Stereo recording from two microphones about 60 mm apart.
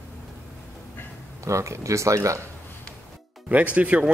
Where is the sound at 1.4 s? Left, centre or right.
Right.